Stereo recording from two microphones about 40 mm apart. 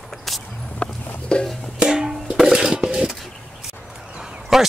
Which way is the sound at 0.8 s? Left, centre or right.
Left.